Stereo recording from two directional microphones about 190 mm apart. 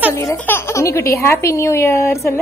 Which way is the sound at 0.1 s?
15° left (ahead or behind).